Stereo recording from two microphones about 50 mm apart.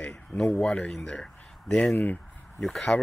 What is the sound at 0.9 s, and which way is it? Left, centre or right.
Speech, centre.